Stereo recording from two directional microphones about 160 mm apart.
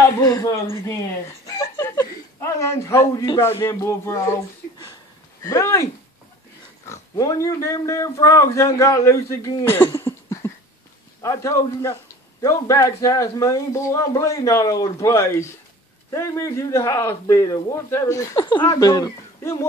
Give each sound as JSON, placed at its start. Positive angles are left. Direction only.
{"t": 0.2, "sound": "a man's voice", "side_deg": 20}
{"t": 6.9, "sound": "a man's voice", "side_deg": 20}